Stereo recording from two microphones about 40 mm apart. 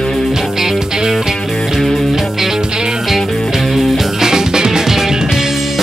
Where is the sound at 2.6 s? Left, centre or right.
Centre.